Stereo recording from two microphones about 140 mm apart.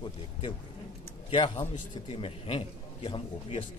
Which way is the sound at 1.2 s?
40° left (ahead or behind).